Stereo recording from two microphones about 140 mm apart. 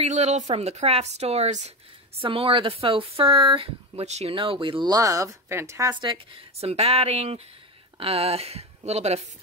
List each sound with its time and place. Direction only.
0.0 s a woman's voice: 55° right (ahead or behind)
2.2 s speech: 40° right (ahead or behind); by 5.9 s 20° right (ahead or behind)
5.9 s speech: 35° right (ahead or behind)
6.6 s a woman's voice: 45° right (ahead or behind)